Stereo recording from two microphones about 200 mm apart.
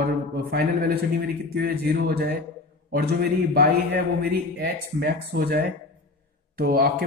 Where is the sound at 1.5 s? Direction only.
50° right (ahead or behind).